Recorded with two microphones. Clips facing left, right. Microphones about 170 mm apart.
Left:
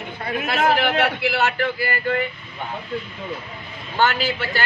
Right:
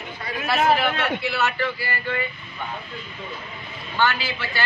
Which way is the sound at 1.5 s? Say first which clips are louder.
Left 3 dB; 50° left (ahead or behind).